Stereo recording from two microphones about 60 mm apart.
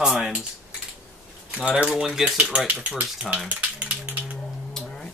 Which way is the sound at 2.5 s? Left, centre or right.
Right.